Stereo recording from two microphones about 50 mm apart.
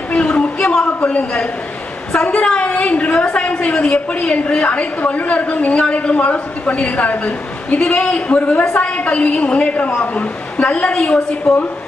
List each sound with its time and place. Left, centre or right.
0.1 s a sound: left
0.8 s a woman's voice: left
8.4 s a woman's voice: left